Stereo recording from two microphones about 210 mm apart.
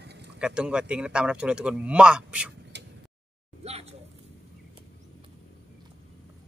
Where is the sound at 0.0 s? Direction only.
50° right (ahead or behind).